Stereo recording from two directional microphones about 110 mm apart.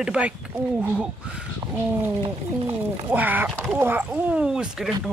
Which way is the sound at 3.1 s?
15° right (ahead or behind).